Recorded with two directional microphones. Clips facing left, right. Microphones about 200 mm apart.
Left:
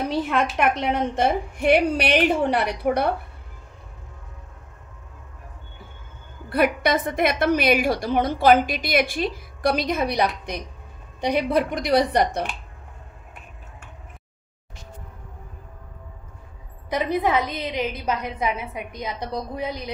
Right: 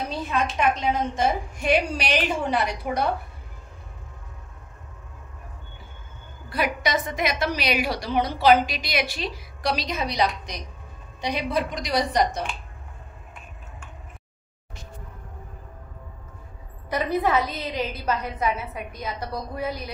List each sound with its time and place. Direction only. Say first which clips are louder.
0.6 s a woman's voice: left 1 dB; 65° left (ahead or behind)
6.5 s a woman's voice: left 5 dB; 55° left (ahead or behind)
16.9 s a woman's voice: left 1 dB; 10° left (ahead or behind)